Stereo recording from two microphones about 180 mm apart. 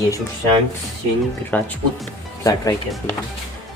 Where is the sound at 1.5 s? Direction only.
10° left (ahead or behind).